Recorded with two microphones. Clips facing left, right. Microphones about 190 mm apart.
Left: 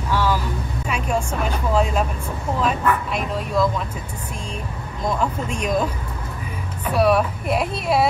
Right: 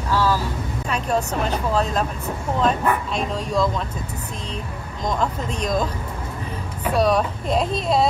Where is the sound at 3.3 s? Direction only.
5° left (ahead or behind).